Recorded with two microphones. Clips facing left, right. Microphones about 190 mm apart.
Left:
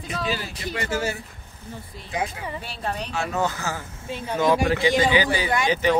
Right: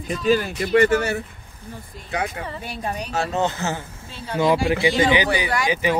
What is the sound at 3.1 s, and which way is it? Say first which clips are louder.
Speech: right 4 dB; 30° right (ahead or behind).